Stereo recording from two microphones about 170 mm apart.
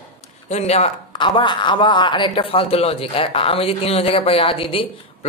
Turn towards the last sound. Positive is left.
turn(degrees=30)  # may be behind; listen again after turning